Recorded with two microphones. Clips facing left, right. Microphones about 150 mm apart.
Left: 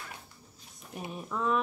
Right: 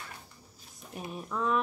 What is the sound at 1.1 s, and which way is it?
Speech, centre (ahead or behind).